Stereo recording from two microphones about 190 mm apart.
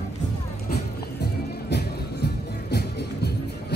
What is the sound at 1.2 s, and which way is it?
Music, 60° left (ahead or behind).